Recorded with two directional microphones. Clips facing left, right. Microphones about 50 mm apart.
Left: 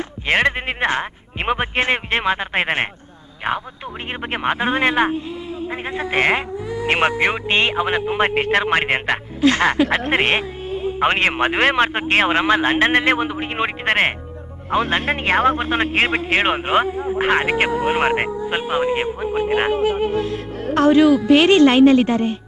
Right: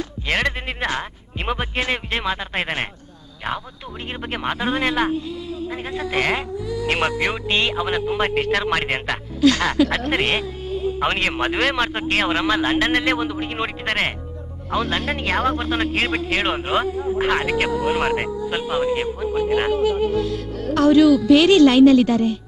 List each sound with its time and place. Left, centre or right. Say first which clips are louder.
0.3 s a man's voice: left 5 dB; left